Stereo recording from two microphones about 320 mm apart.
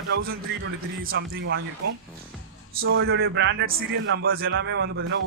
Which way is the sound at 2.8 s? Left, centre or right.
Right.